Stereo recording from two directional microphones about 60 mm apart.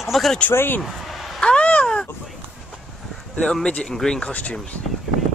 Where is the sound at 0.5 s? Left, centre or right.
Left.